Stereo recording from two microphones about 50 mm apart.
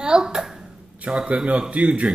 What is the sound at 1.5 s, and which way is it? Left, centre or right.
Speech, right.